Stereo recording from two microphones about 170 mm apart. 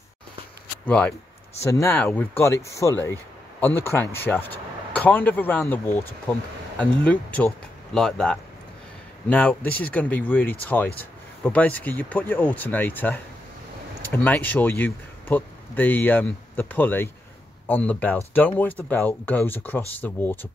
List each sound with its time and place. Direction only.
0.8 s speech: 5° left (ahead or behind)